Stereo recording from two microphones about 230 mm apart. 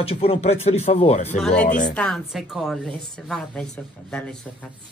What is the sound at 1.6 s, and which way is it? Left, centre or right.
Speech, left.